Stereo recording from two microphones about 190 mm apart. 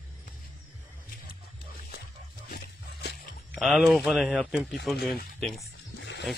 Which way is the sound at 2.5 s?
60° left (ahead or behind).